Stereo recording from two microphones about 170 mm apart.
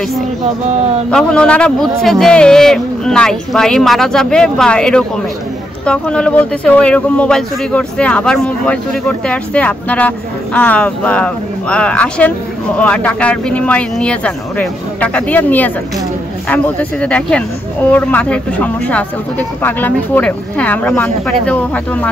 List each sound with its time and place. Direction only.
1.1 s speech: 5° left (ahead or behind)